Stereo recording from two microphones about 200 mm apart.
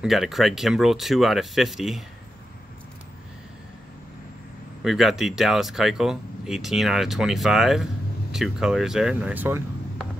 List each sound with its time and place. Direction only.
0.0 s speech: centre (ahead or behind)
4.8 s speech: centre (ahead or behind)